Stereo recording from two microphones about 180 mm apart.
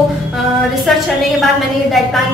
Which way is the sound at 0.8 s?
Centre (ahead or behind).